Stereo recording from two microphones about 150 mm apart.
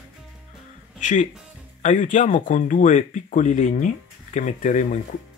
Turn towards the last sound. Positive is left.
turn(degrees=55)  # may be behind; listen again after turning